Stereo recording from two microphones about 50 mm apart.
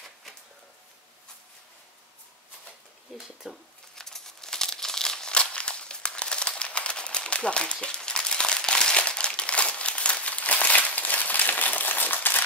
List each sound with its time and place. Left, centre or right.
3.1 s speech: centre
3.9 s crumpling: centre; by 12.4 s left